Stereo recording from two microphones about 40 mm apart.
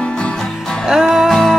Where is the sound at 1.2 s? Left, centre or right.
Centre.